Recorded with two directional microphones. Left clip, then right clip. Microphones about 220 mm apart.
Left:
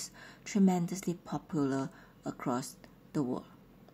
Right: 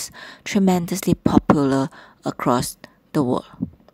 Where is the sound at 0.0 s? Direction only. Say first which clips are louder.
Right 13 dB; 35° right (ahead or behind).